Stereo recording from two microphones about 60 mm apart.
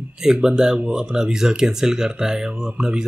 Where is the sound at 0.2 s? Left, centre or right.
Centre.